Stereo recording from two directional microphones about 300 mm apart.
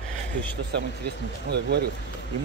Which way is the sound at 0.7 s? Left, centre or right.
Right.